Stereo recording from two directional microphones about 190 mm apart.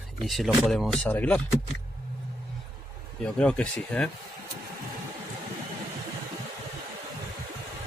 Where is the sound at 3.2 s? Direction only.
5° left (ahead or behind).